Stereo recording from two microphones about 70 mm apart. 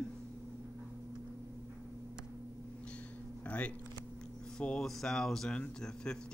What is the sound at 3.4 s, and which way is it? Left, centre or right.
Speech, centre.